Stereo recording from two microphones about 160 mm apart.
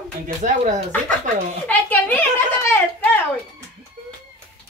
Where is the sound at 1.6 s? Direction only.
10° left (ahead or behind).